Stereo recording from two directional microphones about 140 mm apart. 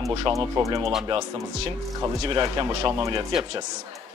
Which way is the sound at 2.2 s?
40° right (ahead or behind).